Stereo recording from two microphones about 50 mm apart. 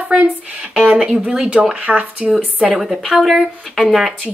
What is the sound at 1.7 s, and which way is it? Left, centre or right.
Speech, right.